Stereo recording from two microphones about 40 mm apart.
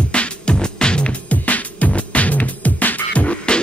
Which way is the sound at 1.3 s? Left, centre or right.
Left.